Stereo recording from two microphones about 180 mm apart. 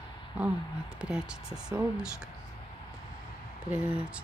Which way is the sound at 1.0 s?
5° right (ahead or behind).